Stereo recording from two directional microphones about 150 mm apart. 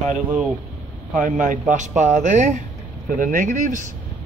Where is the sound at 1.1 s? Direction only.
60° right (ahead or behind).